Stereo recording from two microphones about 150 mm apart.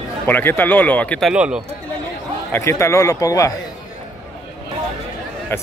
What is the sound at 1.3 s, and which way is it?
Speech, 5° right (ahead or behind).